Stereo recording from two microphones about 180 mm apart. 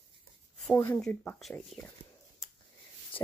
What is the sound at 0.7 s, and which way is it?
Speech, 15° left (ahead or behind).